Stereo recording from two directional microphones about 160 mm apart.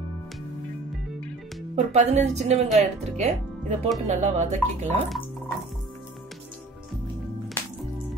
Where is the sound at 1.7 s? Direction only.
45° right (ahead or behind).